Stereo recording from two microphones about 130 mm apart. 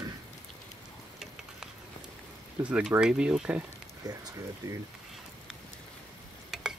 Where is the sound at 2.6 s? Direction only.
10° right (ahead or behind).